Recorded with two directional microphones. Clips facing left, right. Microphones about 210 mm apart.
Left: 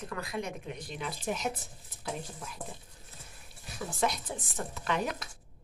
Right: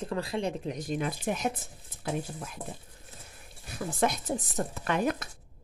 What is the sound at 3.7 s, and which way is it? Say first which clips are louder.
Speech: right 3 dB; 55° right (ahead or behind).